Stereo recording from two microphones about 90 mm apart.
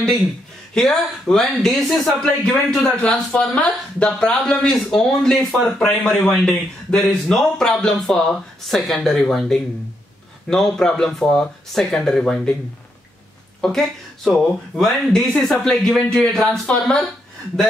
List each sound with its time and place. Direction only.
0.7 s speech: 5° left (ahead or behind)
13.6 s speech: 5° left (ahead or behind)